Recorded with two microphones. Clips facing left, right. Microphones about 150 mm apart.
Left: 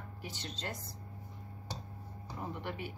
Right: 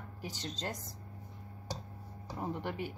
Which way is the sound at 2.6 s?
45° right (ahead or behind).